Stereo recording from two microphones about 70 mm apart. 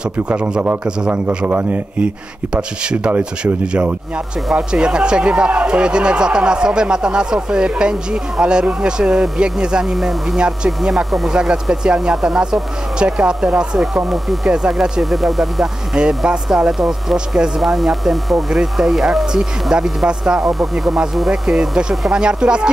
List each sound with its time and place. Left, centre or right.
0.3 s speech: centre
1.1 s a man's voice: right
2.5 s speech: centre
14.0 s speech: centre